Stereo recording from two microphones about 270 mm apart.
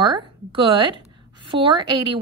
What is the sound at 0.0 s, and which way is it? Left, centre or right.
A woman's voice, centre.